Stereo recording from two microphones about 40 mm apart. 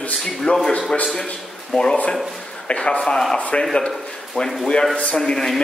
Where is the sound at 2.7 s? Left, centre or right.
Left.